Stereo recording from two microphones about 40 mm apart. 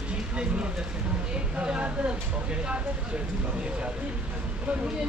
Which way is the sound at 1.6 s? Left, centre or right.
Right.